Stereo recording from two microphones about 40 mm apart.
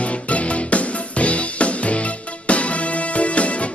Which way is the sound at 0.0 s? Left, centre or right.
Left.